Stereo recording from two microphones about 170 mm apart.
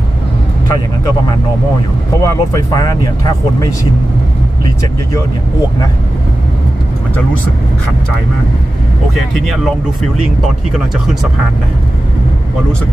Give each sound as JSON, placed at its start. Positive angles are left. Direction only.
{"t": 2.2, "sound": "speech", "side_deg": 20}